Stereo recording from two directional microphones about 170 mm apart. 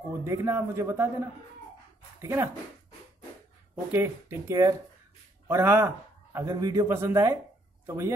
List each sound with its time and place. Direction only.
0.2 s a man's voice: 15° right (ahead or behind)
2.2 s a man's voice: 15° right (ahead or behind)
3.9 s a man's voice: 15° right (ahead or behind)